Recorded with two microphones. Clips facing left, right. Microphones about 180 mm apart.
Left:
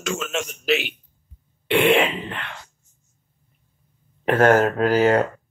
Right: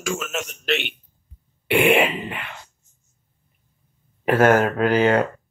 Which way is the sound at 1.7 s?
10° right (ahead or behind).